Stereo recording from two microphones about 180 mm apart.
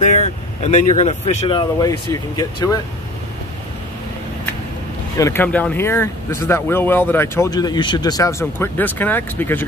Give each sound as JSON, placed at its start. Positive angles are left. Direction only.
{"t": 0.0, "sound": "speech", "side_deg": 40}
{"t": 1.5, "sound": "speech", "side_deg": 25}
{"t": 5.1, "sound": "speech", "side_deg": 15}